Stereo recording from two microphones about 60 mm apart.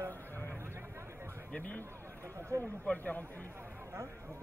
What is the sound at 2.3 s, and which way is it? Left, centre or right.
Speech, right.